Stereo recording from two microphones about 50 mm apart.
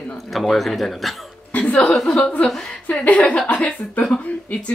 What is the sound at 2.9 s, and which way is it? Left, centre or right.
Speech, left.